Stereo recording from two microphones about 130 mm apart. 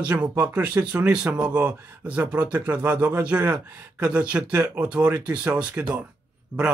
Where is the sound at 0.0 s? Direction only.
10° right (ahead or behind).